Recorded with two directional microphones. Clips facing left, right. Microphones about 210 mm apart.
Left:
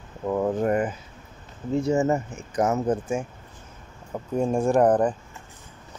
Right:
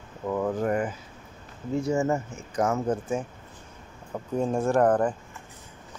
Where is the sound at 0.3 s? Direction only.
30° left (ahead or behind).